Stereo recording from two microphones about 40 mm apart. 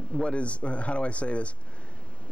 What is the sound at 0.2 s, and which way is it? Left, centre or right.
Speech, left.